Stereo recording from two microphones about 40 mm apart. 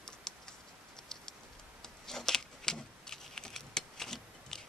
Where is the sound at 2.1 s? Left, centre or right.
Centre.